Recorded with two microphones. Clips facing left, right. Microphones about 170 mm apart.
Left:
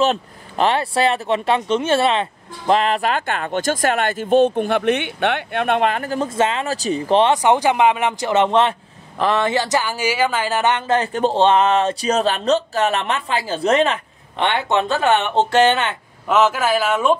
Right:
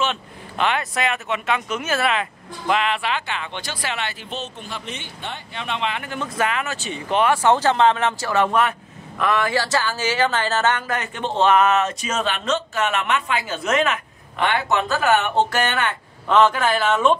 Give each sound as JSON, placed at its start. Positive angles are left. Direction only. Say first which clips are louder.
{"t": 0.0, "sound": "speech", "louder": "left 6 dB", "side_deg": 35}
{"t": 7.4, "sound": "speech", "louder": "left 1 dB", "side_deg": 15}
{"t": 16.3, "sound": "speech", "louder": "even", "side_deg": 5}